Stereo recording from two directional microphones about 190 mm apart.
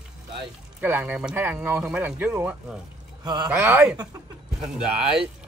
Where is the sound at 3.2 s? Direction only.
20° right (ahead or behind).